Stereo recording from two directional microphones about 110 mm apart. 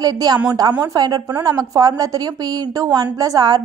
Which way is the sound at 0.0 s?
40° right (ahead or behind).